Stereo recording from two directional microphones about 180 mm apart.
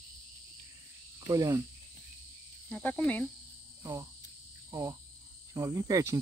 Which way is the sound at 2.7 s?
5° left (ahead or behind).